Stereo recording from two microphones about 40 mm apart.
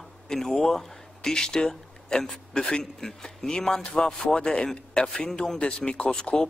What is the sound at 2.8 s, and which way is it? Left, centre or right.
A man's voice, centre.